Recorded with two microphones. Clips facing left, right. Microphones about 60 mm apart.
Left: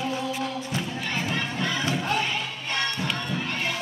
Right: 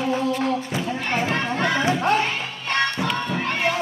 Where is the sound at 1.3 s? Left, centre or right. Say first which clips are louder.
Right 6 dB; right.